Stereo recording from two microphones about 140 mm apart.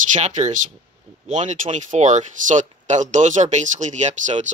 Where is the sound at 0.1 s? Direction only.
60° right (ahead or behind).